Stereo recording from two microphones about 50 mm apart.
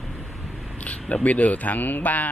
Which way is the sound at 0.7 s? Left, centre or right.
Left.